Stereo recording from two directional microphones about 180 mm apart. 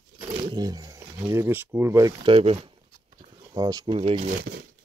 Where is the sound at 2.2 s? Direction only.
30° right (ahead or behind).